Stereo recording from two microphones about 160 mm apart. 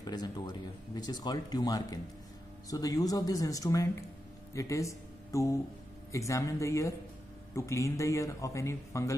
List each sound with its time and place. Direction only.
0.0 s speech: 25° left (ahead or behind)